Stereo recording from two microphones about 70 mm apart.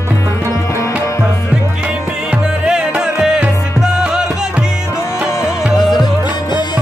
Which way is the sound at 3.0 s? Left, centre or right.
Centre.